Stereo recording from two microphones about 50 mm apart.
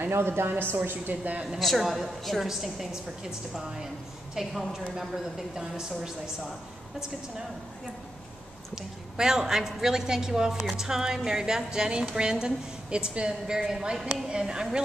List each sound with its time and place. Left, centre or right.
0.0 s speech: right
1.6 s a woman's voice: centre
8.7 s a woman's voice: centre